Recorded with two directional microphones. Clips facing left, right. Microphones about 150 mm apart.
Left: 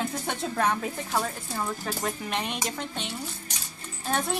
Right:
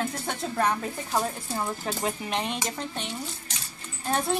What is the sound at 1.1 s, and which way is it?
Speech, 15° right (ahead or behind).